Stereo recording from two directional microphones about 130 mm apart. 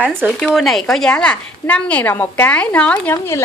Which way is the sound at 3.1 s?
20° left (ahead or behind).